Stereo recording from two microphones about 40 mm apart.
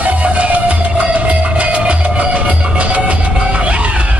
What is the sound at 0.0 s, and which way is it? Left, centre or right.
Music, right.